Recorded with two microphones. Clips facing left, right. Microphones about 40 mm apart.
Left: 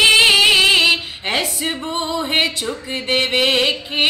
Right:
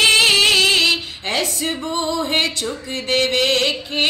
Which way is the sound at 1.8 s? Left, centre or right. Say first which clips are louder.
Right 2 dB; left.